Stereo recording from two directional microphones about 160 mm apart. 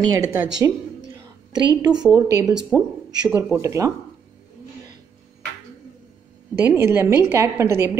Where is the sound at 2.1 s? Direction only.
20° right (ahead or behind).